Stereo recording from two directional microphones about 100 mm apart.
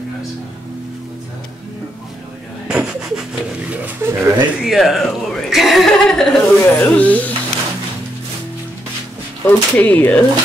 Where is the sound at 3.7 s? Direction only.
20° right (ahead or behind).